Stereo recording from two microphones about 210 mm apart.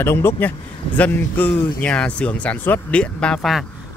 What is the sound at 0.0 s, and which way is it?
Speech, 10° left (ahead or behind).